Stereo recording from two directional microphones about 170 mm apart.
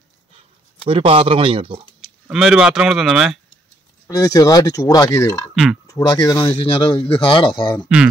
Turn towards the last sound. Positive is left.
turn(degrees=30)  # may be behind; listen again after turning